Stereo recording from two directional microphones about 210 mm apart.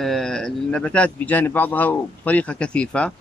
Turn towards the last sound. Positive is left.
turn(degrees=5)  # may be behind; listen again after turning